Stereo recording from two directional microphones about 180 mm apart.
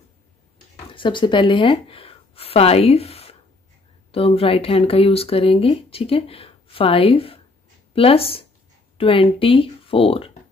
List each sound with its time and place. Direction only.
0.9 s a woman's voice: 25° left (ahead or behind)